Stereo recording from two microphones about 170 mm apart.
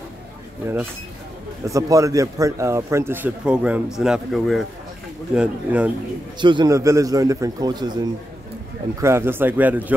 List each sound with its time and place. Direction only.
0.6 s a man's voice: 15° right (ahead or behind)
6.4 s a man's voice: 25° right (ahead or behind)
9.0 s a man's voice: 15° right (ahead or behind)